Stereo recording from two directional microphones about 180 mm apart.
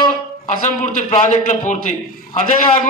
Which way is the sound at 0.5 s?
45° left (ahead or behind).